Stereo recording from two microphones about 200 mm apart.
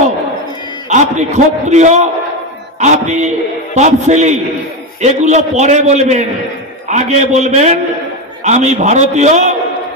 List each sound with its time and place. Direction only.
0.8 s a man's voice: 35° right (ahead or behind)